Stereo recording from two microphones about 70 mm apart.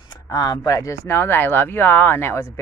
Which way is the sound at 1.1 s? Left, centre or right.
Left.